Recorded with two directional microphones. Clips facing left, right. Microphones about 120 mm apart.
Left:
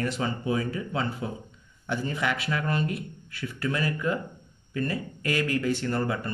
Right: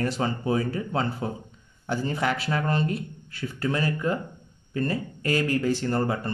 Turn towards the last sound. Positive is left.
turn(degrees=-30)  # may be behind; listen again after turning